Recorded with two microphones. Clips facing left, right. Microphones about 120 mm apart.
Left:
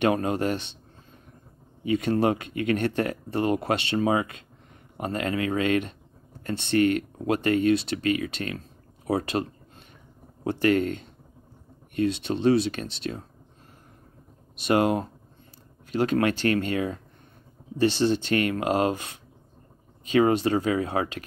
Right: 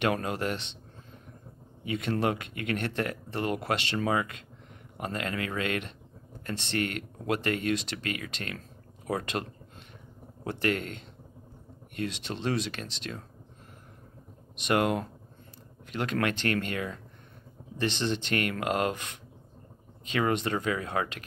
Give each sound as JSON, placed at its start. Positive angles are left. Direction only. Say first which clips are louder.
{"t": 0.0, "sound": "speech", "louder": "left 5 dB", "side_deg": 30}
{"t": 1.9, "sound": "speech", "louder": "left 6 dB", "side_deg": 40}
{"t": 4.0, "sound": "speech", "louder": "left 5 dB", "side_deg": 25}
{"t": 12.1, "sound": "speech", "louder": "left 11 dB", "side_deg": 40}
{"t": 14.6, "sound": "speech", "louder": "left 4 dB", "side_deg": 30}
{"t": 20.2, "sound": "speech", "louder": "left 7 dB", "side_deg": 30}